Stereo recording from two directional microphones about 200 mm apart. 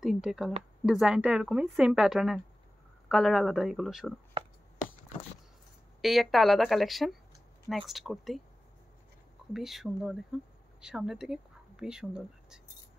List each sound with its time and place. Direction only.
0.0 s a woman's voice: 5° right (ahead or behind)
4.4 s a sound: 25° right (ahead or behind)
5.9 s a woman's voice: centre (ahead or behind)
9.5 s a woman's voice: centre (ahead or behind)